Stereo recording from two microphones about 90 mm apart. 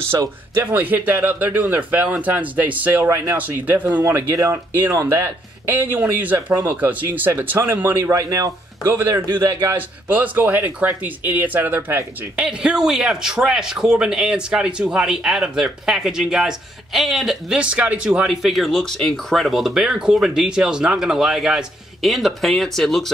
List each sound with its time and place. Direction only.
0.1 s speech: 45° right (ahead or behind)
0.6 s a man's voice: 20° right (ahead or behind)
4.0 s speech: 30° right (ahead or behind)
8.1 s speech: 35° right (ahead or behind); by 12.4 s 20° right (ahead or behind)
12.4 s a man's voice: 5° right (ahead or behind)